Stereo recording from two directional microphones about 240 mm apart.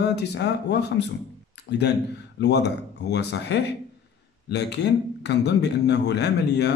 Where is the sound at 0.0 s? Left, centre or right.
Left.